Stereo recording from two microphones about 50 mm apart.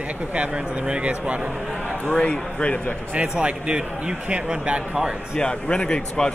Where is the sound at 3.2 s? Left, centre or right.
Right.